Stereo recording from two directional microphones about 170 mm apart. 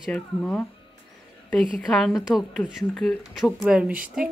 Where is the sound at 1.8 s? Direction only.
5° left (ahead or behind).